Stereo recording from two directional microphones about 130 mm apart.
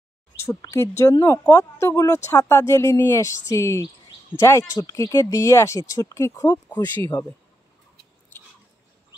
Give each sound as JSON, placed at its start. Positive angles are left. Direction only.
{"t": 0.4, "sound": "speech", "side_deg": 25}